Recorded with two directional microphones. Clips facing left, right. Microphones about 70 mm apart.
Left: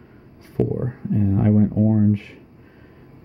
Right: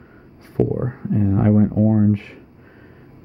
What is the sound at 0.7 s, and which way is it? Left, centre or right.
Speech, right.